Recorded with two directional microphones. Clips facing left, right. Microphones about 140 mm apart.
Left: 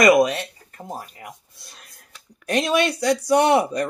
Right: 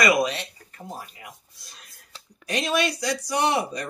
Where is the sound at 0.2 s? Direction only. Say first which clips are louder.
Left 6 dB; 50° left (ahead or behind).